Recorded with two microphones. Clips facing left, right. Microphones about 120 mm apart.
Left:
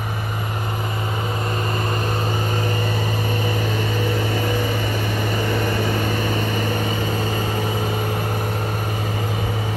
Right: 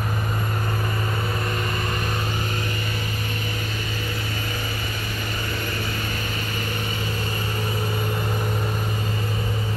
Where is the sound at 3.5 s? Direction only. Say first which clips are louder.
Left 8 dB; 80° left.